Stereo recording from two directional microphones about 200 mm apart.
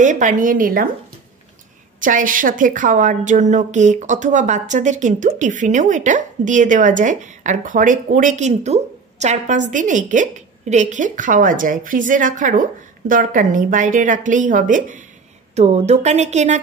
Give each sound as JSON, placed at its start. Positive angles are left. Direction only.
{"t": 0.0, "sound": "a woman's voice", "side_deg": -40}
{"t": 2.0, "sound": "a woman's voice", "side_deg": -40}